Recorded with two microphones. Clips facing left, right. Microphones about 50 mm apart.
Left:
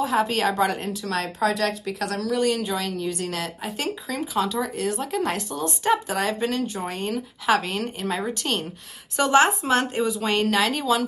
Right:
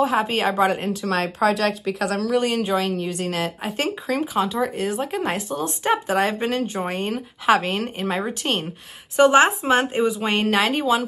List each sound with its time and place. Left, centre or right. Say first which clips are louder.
0.0 s speech: right 2 dB; right
2.3 s speech: right 2 dB; right
3.7 s speech: right 5 dB; right
4.4 s speech: left 1 dB; centre